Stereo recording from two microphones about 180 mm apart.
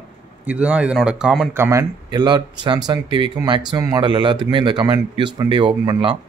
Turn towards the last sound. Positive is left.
turn(degrees=-25)  # may be behind; listen again after turning